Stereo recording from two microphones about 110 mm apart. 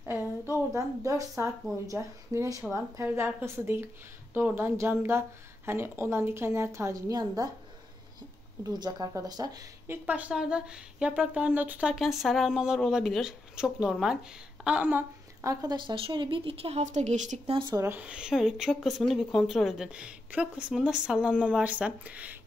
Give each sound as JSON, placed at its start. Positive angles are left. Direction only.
{"t": 0.0, "sound": "a sound", "side_deg": -20}
{"t": 1.9, "sound": "a woman's voice", "side_deg": -30}
{"t": 8.6, "sound": "speech", "side_deg": -40}
{"t": 9.8, "sound": "speech", "side_deg": -15}
{"t": 11.9, "sound": "speech", "side_deg": -5}
{"t": 15.4, "sound": "a woman's voice", "side_deg": -40}
{"t": 17.6, "sound": "speech", "side_deg": -40}
{"t": 17.8, "sound": "speech", "side_deg": -10}